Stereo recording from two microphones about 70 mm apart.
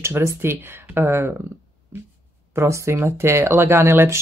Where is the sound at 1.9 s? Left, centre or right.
Right.